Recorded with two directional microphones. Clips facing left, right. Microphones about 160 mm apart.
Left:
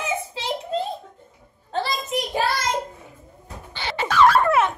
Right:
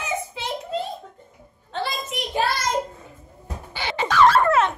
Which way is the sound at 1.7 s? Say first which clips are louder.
Left 3 dB; 40° left (ahead or behind).